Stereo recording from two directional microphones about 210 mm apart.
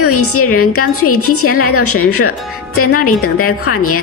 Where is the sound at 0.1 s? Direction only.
90° left.